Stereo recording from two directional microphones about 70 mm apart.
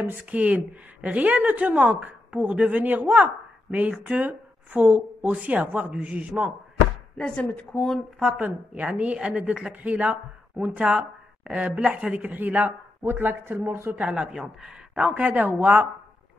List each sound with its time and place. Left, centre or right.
0.0 s a woman's voice: right
7.3 s a woman's voice: centre
8.2 s a woman's voice: centre; by 13.9 s right
13.9 s a woman's voice: centre
14.2 s speech: centre
15.0 s a woman's voice: right